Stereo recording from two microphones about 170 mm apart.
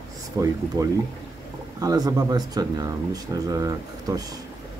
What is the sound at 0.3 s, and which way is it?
Speech, 20° right (ahead or behind).